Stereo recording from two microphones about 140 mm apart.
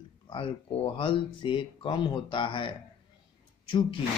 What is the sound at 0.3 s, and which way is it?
Speech, 40° left (ahead or behind).